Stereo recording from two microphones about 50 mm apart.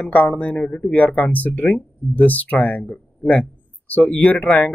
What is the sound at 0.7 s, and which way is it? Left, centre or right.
Speech, left.